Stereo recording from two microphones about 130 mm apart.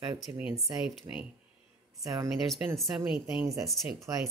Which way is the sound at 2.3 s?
Centre (ahead or behind).